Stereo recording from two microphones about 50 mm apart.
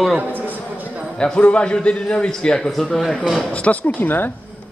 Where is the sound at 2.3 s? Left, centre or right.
Centre.